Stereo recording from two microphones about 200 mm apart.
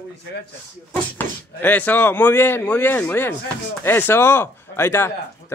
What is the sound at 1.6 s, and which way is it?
Speech, 10° left (ahead or behind).